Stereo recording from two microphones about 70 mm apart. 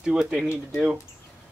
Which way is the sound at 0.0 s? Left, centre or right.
Centre.